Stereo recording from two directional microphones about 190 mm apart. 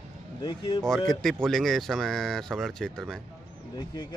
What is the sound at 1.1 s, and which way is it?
Speech, centre (ahead or behind).